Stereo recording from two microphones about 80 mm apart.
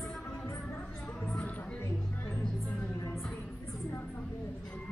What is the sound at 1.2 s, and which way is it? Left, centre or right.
Music, centre.